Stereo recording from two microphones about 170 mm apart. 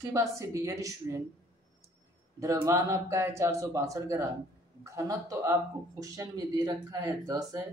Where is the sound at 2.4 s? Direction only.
20° right (ahead or behind).